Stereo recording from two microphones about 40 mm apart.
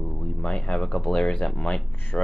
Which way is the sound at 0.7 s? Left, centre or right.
Centre.